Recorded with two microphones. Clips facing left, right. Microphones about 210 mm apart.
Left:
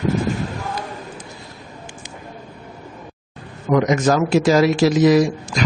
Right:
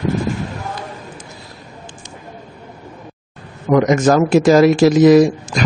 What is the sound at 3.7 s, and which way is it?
A man's voice, 45° right (ahead or behind).